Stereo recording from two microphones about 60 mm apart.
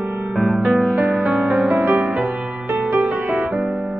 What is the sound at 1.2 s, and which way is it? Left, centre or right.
Music, centre.